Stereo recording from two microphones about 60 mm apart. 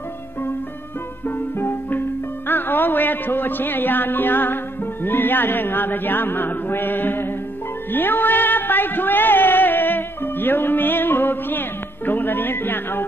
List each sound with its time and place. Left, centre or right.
1.2 s music: left
5.0 s a man's voice: left
7.9 s music: left
12.1 s speech: left